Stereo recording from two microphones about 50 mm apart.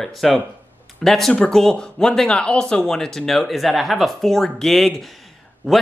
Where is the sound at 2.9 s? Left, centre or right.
Centre.